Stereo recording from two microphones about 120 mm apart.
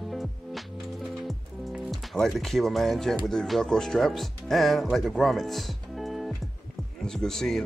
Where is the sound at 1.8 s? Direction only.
Centre (ahead or behind).